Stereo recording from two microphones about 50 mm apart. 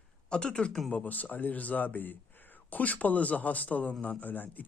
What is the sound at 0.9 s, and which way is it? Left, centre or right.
A man's voice, left.